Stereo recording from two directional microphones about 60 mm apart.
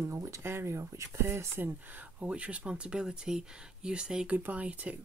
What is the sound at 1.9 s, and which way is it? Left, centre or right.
Speech, right.